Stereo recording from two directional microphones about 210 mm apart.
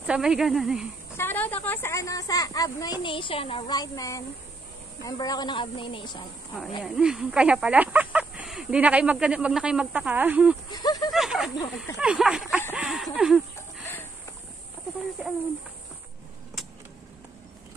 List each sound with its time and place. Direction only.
0.0 s speech: 5° right (ahead or behind)
1.1 s a woman's voice: 10° left (ahead or behind)
6.8 s speech: 5° right (ahead or behind)
10.7 s speech: 20° left (ahead or behind)
11.1 s snake: centre (ahead or behind)
12.0 s speech: 5° right (ahead or behind)
13.6 s a sound: 10° left (ahead or behind)